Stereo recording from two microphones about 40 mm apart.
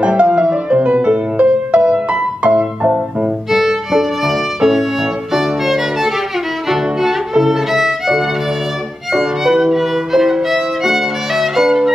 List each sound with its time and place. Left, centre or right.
0.0 s music: right
3.5 s violin: centre